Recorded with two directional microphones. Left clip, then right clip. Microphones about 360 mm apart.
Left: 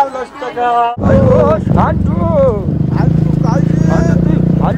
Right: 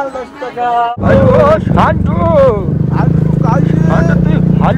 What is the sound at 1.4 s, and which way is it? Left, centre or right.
Speech, centre.